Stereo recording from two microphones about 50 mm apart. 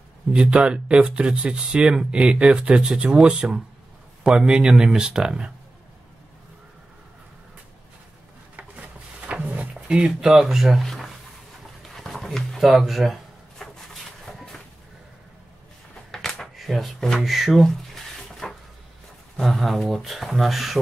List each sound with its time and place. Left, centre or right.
0.3 s speech: centre
9.3 s a sound: right
10.2 s speech: centre
11.9 s dog: centre
12.6 s a sound: centre
16.1 s a sound: centre
16.5 s speech: centre
18.4 s cupboard open or close: centre
19.3 s speech: centre